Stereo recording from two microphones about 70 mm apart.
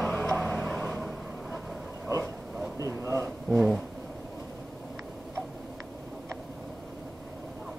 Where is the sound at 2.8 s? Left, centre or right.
Right.